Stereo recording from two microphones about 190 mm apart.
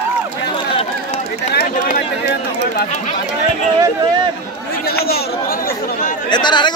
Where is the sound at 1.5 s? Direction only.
55° left (ahead or behind).